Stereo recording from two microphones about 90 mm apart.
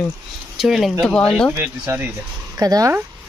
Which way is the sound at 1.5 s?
25° right (ahead or behind).